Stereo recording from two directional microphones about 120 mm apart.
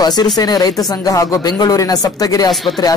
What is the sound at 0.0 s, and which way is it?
A woman's voice, 35° left (ahead or behind).